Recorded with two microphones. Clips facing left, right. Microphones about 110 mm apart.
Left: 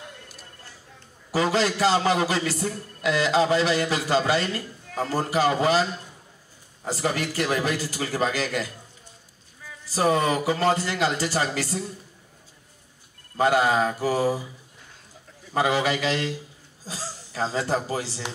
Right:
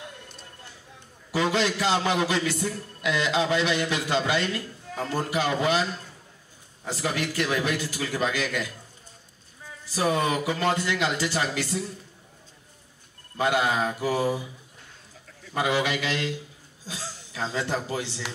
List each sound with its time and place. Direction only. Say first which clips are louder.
1.3 s a man's voice: left 2 dB; 40° left (ahead or behind)
9.8 s a man's voice: left 3 dB; 40° left (ahead or behind)
13.4 s a man's voice: left 4 dB; 35° left (ahead or behind)
15.5 s a man's voice: left 3 dB; 35° left (ahead or behind)